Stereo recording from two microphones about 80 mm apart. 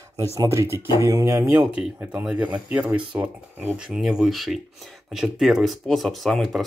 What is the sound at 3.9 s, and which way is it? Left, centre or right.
Speech, centre.